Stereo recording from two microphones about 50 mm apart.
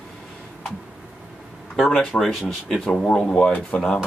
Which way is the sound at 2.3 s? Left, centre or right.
Centre.